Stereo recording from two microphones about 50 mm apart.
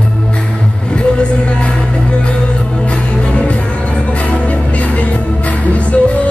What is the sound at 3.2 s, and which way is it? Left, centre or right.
Music, left.